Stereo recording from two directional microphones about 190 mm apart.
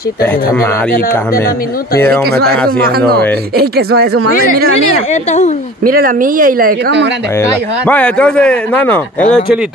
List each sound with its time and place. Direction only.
0.2 s speech: 15° left (ahead or behind)
2.0 s speech: 10° left (ahead or behind)
2.2 s speech: 55° right (ahead or behind)
3.5 s speech: 55° right (ahead or behind)
5.1 s speech: 35° left (ahead or behind)
5.9 s speech: 45° right (ahead or behind)
7.3 s speech: 10° left (ahead or behind)